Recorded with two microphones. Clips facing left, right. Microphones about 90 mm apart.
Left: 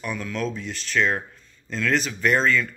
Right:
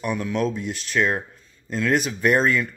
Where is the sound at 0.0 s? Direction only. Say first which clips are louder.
Right 4 dB; 15° right (ahead or behind).